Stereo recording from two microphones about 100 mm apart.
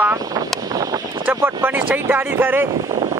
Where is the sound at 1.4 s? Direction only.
25° right (ahead or behind).